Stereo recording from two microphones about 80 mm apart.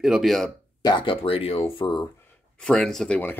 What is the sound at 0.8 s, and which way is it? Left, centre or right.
Speech, left.